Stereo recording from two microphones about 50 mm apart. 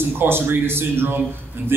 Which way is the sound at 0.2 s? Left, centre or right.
Right.